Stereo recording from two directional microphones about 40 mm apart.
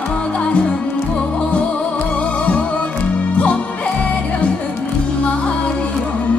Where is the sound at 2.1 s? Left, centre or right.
Left.